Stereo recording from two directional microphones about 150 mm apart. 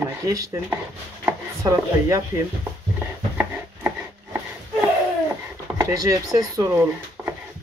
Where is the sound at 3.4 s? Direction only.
10° right (ahead or behind).